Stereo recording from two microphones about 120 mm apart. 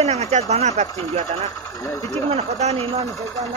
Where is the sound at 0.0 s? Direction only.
65° right (ahead or behind).